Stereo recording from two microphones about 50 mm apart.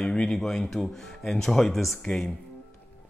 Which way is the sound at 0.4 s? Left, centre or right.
Centre.